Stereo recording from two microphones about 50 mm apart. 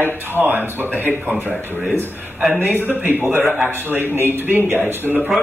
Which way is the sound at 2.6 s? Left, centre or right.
Right.